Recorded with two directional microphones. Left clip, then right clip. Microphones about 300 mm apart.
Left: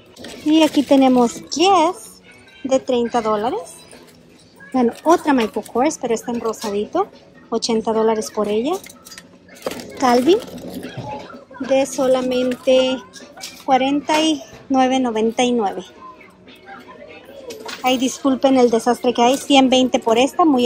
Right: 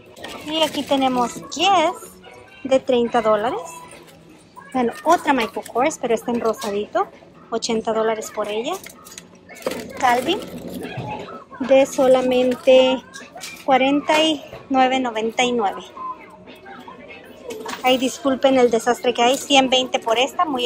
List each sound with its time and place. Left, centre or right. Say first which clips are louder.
0.8 s speech: left 5 dB; centre
4.7 s speech: left 2 dB; centre
9.6 s a sound: right 1 dB; centre
9.9 s speech: left 4 dB; centre
11.7 s speech: right 2 dB; centre
17.8 s speech: even; centre